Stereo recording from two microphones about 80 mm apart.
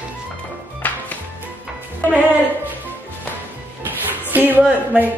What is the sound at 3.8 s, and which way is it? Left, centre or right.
Music, right.